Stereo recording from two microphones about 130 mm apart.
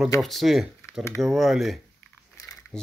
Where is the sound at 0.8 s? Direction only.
20° left (ahead or behind).